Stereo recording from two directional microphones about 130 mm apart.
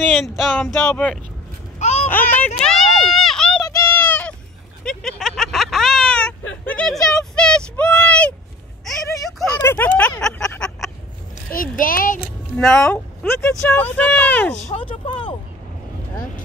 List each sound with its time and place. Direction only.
0.0 s speech: centre (ahead or behind)
0.7 s speech: 10° left (ahead or behind)
1.8 s babbling: 55° left (ahead or behind)
2.0 s a sound: 15° left (ahead or behind)
4.8 s a sound: 5° left (ahead or behind)
9.6 s speech: 15° left (ahead or behind)
11.5 s speech: 90° left
12.5 s speech: 5° left (ahead or behind)
12.9 s speech: 15° left (ahead or behind)
14.8 s speech: 40° left (ahead or behind)